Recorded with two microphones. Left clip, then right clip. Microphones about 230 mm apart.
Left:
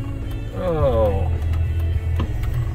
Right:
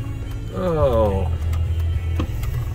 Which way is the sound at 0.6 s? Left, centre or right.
Right.